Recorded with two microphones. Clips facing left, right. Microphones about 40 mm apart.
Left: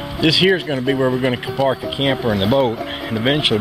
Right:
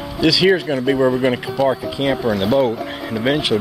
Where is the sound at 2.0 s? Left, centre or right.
Left.